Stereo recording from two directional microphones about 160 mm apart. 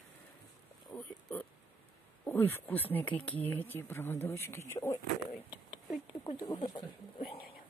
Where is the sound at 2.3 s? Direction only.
15° left (ahead or behind).